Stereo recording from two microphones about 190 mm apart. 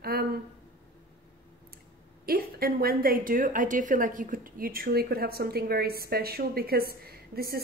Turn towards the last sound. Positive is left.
turn(degrees=-55)  # may be behind; listen again after turning